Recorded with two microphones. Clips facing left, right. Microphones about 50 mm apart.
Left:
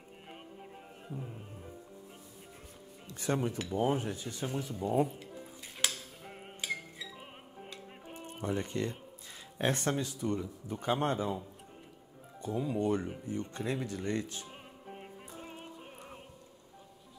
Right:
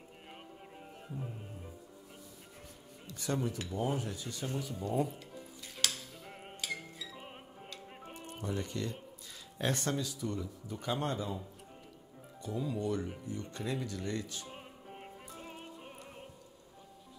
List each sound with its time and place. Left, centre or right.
3.1 s speech: left
4.6 s dishes: left
7.2 s music: centre
7.7 s music: left
9.3 s speech: left